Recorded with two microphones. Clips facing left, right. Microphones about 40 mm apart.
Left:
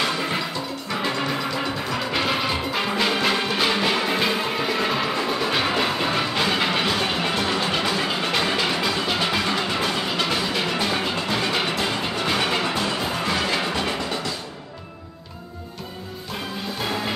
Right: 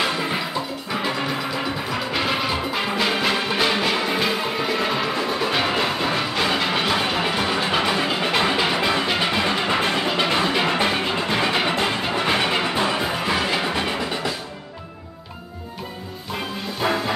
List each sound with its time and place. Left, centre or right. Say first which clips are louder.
0.0 s music: right 1 dB; centre